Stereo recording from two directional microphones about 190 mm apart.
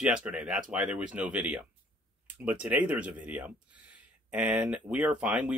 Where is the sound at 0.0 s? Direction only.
5° right (ahead or behind).